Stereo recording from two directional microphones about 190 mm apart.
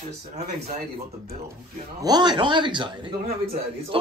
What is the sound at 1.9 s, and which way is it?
A man's voice, 20° right (ahead or behind).